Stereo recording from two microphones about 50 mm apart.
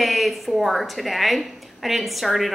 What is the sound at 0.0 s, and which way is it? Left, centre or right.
A woman's voice, centre.